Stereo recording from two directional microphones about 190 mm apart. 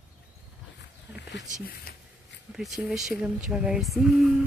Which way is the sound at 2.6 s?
Centre (ahead or behind).